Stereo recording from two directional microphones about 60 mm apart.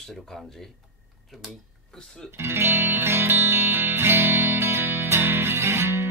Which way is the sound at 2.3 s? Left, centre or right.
Right.